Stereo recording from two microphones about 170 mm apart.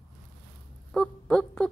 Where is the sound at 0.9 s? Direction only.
5° left (ahead or behind).